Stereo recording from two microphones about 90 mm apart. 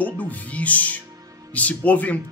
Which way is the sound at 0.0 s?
15° left (ahead or behind).